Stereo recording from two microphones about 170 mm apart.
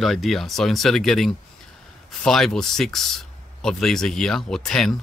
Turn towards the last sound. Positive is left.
turn(degrees=0)  # may be behind; listen again after turning